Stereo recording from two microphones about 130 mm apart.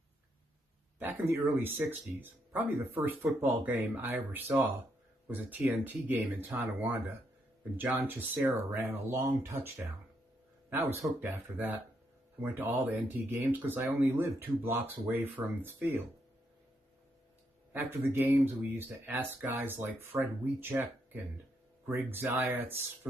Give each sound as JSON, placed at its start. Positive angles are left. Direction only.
{"t": 0.9, "sound": "speech", "side_deg": -15}
{"t": 17.7, "sound": "speech", "side_deg": -20}